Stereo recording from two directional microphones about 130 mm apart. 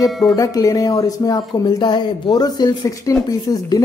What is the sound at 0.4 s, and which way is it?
Speech, 25° left (ahead or behind).